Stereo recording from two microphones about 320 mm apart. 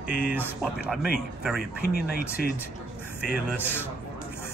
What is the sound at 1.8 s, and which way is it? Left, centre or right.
Speech, left.